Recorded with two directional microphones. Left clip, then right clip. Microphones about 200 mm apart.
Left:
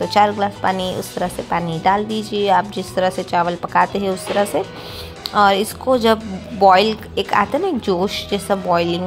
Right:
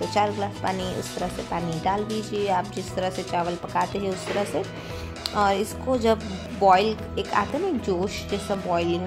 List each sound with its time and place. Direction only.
0.1 s speech: 15° left (ahead or behind)